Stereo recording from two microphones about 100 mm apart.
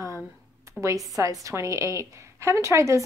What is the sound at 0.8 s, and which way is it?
A woman's voice, 35° right (ahead or behind).